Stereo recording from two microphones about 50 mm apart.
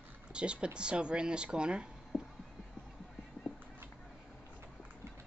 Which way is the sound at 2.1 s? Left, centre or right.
Left.